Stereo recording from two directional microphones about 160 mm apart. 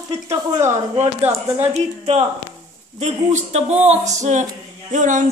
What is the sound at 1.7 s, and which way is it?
Speech, 40° right (ahead or behind).